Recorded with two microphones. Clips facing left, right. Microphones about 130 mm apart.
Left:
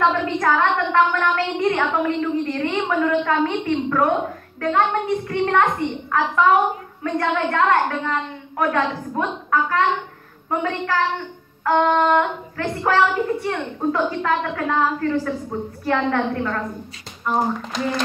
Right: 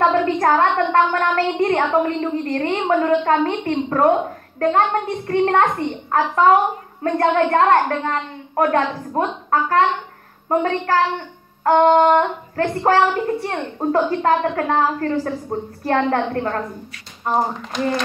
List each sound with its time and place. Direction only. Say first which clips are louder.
0.0 s a woman's voice: right 3 dB; 40° right (ahead or behind)